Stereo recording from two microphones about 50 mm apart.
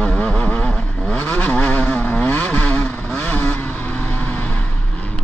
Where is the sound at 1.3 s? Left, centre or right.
Left.